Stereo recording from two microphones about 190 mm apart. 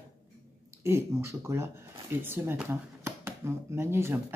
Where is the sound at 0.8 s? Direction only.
15° right (ahead or behind).